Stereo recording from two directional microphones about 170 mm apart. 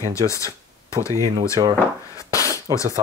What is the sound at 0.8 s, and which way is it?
Speech, 15° left (ahead or behind).